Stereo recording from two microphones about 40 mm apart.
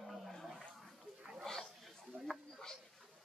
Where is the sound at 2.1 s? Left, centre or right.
Right.